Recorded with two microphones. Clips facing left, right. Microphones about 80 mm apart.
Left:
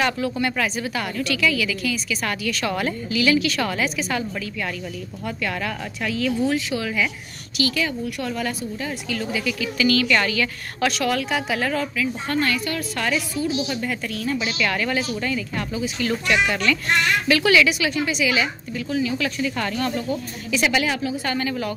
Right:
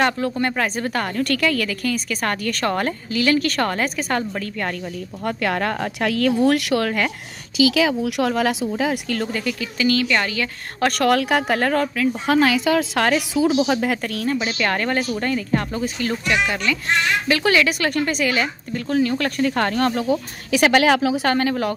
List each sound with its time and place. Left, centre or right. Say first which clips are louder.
0.0 s a woman's voice: right 2 dB; right
7.7 s speech: right 6 dB; right
9.2 s a woman's voice: right 1 dB; right
10.9 s a woman's voice: right 6 dB; right
12.3 s a woman's voice: right 9 dB; right
14.3 s a woman's voice: right 1 dB; right
16.3 s speech: left 1 dB; right
17.3 s a woman's voice: left 1 dB; right